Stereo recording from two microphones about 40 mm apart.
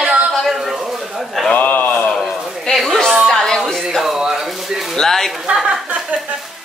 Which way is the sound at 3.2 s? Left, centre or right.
Centre.